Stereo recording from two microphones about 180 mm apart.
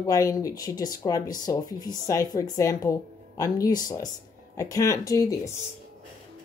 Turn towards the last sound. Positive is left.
turn(degrees=15)  # may be behind; listen again after turning